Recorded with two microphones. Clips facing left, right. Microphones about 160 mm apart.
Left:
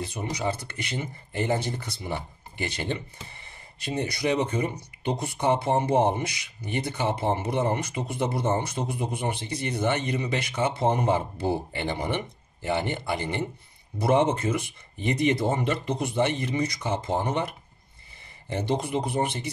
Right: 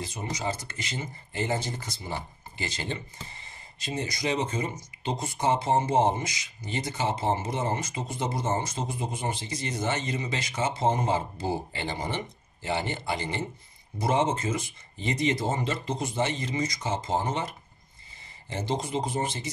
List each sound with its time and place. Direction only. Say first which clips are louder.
0.0 s speech: left 3 dB; 60° left (ahead or behind)